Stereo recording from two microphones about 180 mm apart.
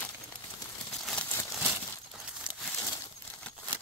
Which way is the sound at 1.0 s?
10° left (ahead or behind).